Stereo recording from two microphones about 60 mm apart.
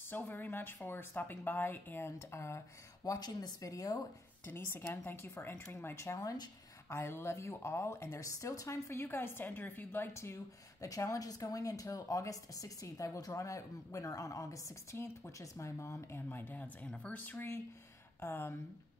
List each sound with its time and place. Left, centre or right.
0.1 s a woman's voice: left
2.0 s speech: left
3.0 s speech: left
4.5 s a woman's voice: left
5.9 s speech: left
8.2 s a woman's voice: left
10.1 s speech: left
16.3 s speech: left
18.2 s a woman's voice: left